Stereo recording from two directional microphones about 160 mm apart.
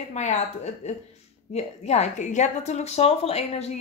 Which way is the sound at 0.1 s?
45° left (ahead or behind).